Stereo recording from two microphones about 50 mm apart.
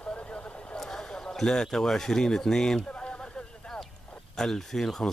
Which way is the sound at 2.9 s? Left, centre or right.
Left.